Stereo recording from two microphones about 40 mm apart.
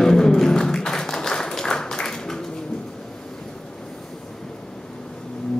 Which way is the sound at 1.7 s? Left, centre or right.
Centre.